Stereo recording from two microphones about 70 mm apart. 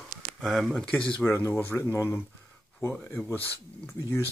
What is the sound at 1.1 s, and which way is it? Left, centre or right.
Speech, left.